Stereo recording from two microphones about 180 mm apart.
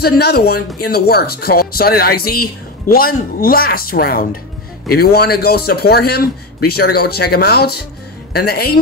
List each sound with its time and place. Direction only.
0.0 s a woman's voice: 60° left (ahead or behind)